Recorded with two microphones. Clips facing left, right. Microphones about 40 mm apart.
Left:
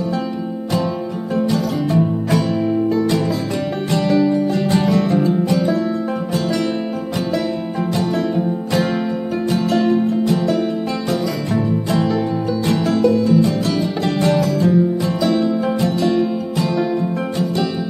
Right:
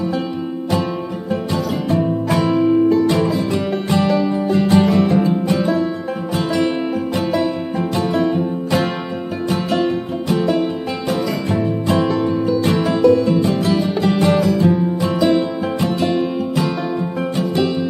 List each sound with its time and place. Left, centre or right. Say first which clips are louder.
1.5 s music: right 1 dB; centre
4.1 s music: left 1 dB; centre
6.3 s music: right 3 dB; centre
9.5 s music: left 2 dB; right
12.6 s music: right 2 dB; right